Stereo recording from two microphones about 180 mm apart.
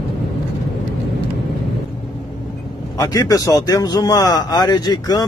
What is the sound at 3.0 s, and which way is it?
Speech, 20° left (ahead or behind).